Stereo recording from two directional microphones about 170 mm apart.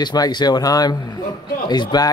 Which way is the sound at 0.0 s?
25° left (ahead or behind).